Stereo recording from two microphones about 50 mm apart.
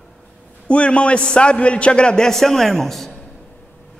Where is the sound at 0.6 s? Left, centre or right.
Left; by 3.0 s centre.